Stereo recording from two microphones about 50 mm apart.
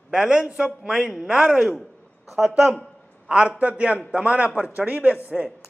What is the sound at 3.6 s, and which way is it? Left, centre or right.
A man's voice, right.